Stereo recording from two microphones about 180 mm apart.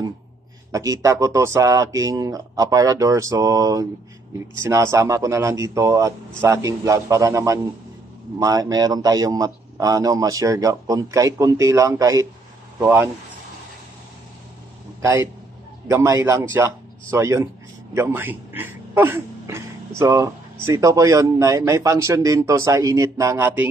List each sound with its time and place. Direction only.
0.7 s a man's voice: 20° right (ahead or behind)
15.0 s a man's voice: 15° right (ahead or behind)